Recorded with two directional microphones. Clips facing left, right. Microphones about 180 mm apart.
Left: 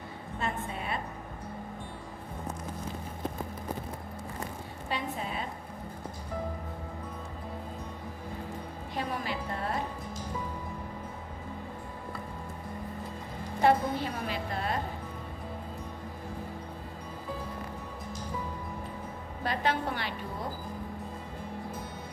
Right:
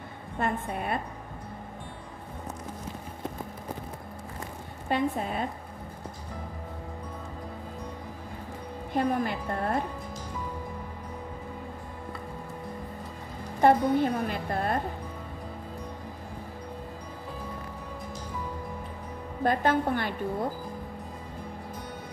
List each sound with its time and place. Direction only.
0.4 s a woman's voice: 55° right (ahead or behind)
4.8 s a woman's voice: 50° right (ahead or behind)
8.9 s a woman's voice: 50° right (ahead or behind)
13.6 s a woman's voice: 50° right (ahead or behind)
19.4 s a woman's voice: 50° right (ahead or behind)